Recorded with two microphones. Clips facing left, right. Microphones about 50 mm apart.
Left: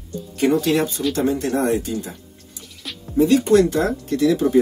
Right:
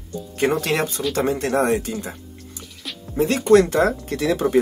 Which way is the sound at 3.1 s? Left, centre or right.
Right.